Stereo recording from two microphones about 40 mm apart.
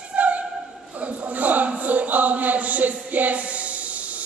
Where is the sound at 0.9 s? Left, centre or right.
Right.